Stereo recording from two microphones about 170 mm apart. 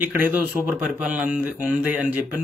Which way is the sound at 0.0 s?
10° right (ahead or behind).